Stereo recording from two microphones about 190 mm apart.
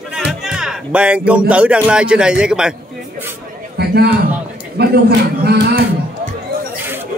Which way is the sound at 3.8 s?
60° right (ahead or behind).